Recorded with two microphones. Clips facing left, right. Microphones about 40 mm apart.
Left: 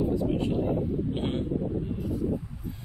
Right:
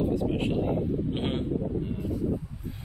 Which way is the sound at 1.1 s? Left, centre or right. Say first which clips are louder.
Even; right.